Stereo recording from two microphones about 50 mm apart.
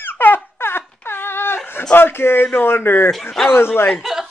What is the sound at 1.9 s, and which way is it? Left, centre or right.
Speech, left.